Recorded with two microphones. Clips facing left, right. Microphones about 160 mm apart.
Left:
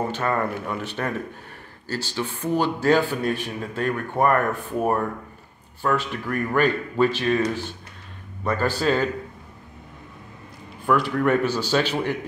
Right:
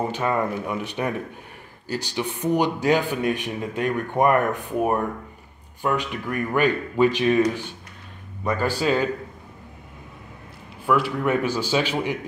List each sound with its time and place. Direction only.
0.1 s speech: 10° right (ahead or behind)
8.5 s speech: 10° right (ahead or behind)
10.9 s speech: 5° right (ahead or behind)